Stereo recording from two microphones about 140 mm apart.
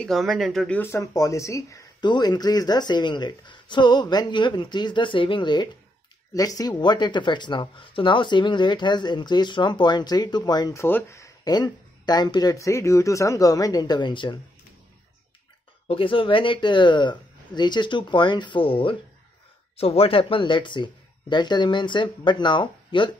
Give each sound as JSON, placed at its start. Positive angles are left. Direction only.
{"t": 0.0, "sound": "speech", "side_deg": 0}
{"t": 0.7, "sound": "speech", "side_deg": 20}
{"t": 10.8, "sound": "speech", "side_deg": 15}
{"t": 15.9, "sound": "speech", "side_deg": 40}